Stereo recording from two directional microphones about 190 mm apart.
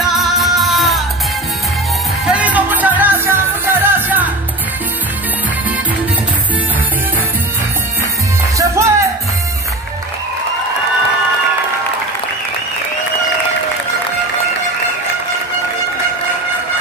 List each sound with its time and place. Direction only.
0.1 s music: centre (ahead or behind)
2.2 s music: 5° right (ahead or behind)
8.5 s music: 15° right (ahead or behind)